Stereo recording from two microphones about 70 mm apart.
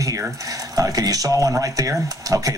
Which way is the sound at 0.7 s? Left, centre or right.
Right.